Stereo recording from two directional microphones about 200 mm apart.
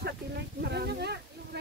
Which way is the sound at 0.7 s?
55° right (ahead or behind).